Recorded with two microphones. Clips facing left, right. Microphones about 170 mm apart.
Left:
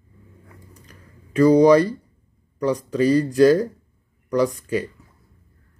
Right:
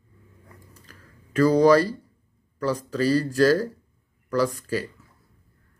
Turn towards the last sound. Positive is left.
turn(degrees=15)  # may be behind; listen again after turning